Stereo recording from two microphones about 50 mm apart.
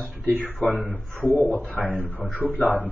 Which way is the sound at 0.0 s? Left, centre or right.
Right.